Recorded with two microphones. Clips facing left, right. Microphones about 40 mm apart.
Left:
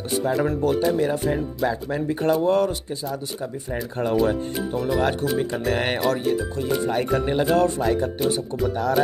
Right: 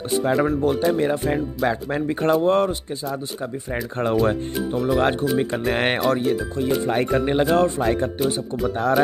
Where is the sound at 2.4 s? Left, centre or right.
Right.